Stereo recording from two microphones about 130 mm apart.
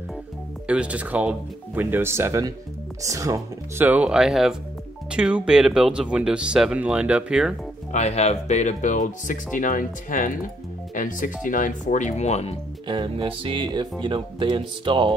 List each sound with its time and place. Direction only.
0.7 s speech: 10° right (ahead or behind)
7.9 s speech: 60° left (ahead or behind)
12.8 s speech: 40° right (ahead or behind)